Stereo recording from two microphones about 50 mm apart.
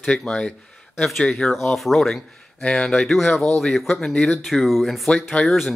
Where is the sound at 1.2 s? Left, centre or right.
Centre.